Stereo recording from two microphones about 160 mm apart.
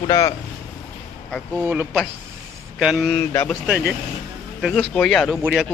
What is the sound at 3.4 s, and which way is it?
A man's voice, 5° right (ahead or behind).